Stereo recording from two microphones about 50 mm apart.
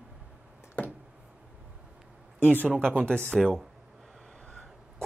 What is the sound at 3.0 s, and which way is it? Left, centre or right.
Speech, centre.